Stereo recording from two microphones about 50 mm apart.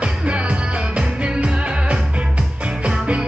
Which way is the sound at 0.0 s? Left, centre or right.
Right.